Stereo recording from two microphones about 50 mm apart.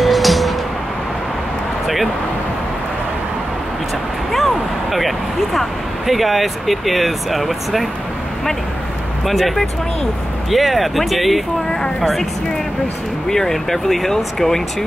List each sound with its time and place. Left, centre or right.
0.0 s a sound: centre
4.3 s speech: centre
9.2 s speech: centre
13.3 s speech: centre